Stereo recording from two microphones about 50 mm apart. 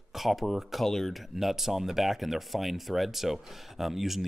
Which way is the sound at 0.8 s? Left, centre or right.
Centre.